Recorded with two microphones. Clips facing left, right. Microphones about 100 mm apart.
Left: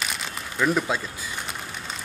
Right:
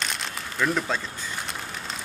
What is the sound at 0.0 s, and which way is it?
Crumpling, 5° left (ahead or behind).